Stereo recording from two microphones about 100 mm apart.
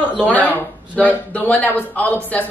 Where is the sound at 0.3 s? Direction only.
15° left (ahead or behind).